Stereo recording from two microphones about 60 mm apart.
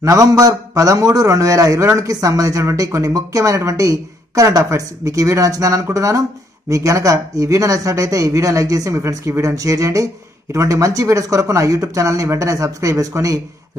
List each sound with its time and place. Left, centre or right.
0.0 s a man's voice: right
9.0 s speech: right
9.6 s a man's voice: right